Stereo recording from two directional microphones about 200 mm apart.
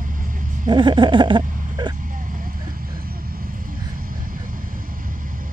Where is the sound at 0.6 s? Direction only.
25° right (ahead or behind).